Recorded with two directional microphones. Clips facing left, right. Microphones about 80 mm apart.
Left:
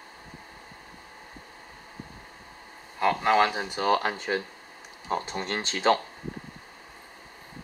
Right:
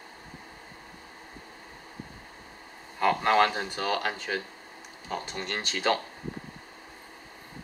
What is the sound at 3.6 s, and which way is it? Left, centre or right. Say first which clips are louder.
Speech: left 5 dB; centre.